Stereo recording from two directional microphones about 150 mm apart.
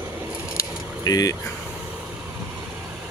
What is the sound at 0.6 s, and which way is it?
Keys jangling, 25° left (ahead or behind).